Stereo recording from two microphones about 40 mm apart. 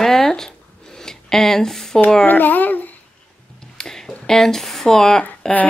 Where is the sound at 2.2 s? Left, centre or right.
Left.